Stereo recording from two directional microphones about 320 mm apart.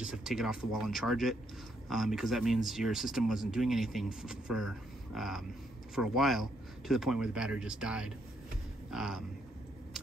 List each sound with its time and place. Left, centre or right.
0.0 s speech: centre